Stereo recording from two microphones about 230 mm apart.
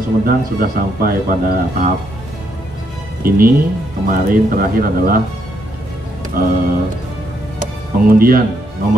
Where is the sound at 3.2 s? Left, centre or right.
Right.